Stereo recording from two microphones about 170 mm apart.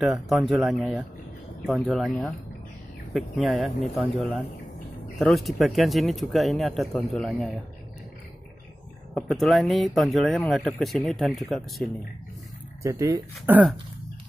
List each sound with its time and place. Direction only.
0.0 s speech: centre (ahead or behind)
5.2 s speech: centre (ahead or behind)
9.1 s speech: centre (ahead or behind)
12.8 s speech: 20° right (ahead or behind)